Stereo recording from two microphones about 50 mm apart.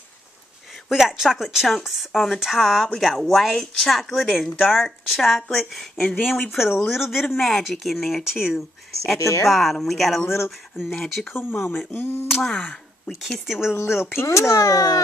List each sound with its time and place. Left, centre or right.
0.8 s speech: centre
6.0 s speech: left
6.9 s speech: centre
8.5 s speech: centre
9.2 s speech: left
9.5 s speech: centre
11.3 s speech: left
12.4 s speech: centre
13.5 s speech: centre
13.7 s speech: left
14.2 s speech: left